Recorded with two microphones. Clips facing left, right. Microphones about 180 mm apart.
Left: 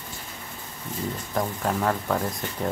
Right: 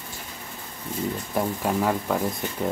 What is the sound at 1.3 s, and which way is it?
Speech, 10° right (ahead or behind).